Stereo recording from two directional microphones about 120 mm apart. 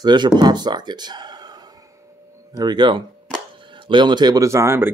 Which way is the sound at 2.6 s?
40° right (ahead or behind).